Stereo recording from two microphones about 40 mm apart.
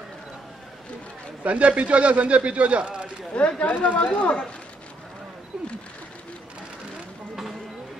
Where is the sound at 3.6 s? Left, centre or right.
Left.